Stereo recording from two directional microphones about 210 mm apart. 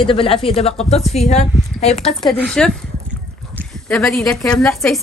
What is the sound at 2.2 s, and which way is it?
Speech, 5° left (ahead or behind).